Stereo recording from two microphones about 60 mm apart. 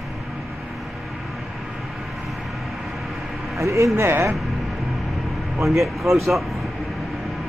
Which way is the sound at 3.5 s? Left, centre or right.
Right.